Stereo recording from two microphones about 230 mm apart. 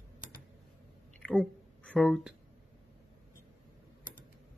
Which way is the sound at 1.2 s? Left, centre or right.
Centre.